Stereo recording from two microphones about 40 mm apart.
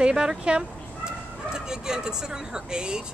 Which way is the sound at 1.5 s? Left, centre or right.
Centre.